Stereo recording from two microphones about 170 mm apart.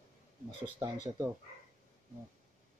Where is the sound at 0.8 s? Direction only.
20° right (ahead or behind).